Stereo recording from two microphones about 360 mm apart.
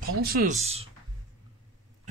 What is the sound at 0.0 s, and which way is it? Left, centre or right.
Speech, right.